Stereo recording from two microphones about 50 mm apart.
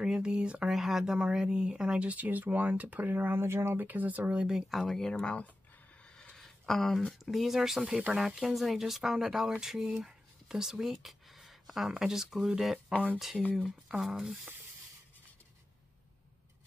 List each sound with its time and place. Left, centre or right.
0.0 s speech: centre
0.7 s speech: centre
1.1 s speech: centre; by 3.8 s right
3.8 s speech: right
4.6 s speech: centre
5.2 s speech: left
6.0 s a sound: centre
6.3 s speech: centre
10.0 s a sound: centre
11.9 s speech: centre
13.4 s speech: left
13.7 s speech: centre